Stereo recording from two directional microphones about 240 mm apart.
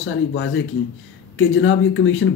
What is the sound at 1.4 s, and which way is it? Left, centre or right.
Speech, left.